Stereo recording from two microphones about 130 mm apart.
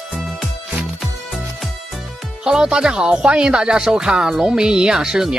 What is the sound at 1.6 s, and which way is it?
Speech, centre (ahead or behind).